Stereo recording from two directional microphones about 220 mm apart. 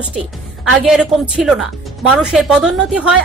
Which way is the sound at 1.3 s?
Centre (ahead or behind).